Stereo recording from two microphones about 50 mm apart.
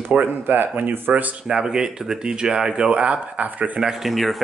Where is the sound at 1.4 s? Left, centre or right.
Centre.